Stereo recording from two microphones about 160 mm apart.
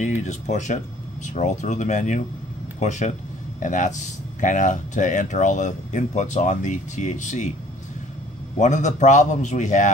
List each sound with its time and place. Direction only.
0.0 s speech: 50° left (ahead or behind)
8.5 s speech: 50° left (ahead or behind)